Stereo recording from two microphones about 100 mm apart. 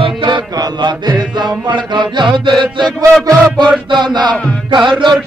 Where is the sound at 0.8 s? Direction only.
50° right (ahead or behind).